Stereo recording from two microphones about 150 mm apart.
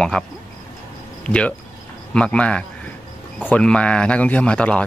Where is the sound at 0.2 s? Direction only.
5° left (ahead or behind).